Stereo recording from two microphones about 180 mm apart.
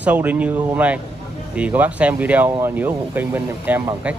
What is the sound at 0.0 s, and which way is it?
Speech, 10° right (ahead or behind).